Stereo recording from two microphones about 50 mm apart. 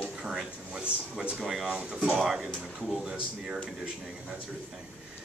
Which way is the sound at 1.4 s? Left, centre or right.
Centre.